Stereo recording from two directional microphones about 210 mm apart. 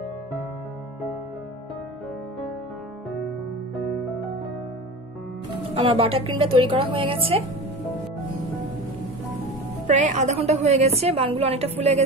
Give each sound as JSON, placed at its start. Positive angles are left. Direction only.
{"t": 5.5, "sound": "speech", "side_deg": -25}
{"t": 9.8, "sound": "a woman's voice", "side_deg": -35}